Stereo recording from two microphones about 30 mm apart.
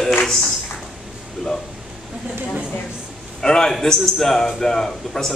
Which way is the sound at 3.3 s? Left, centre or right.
Left.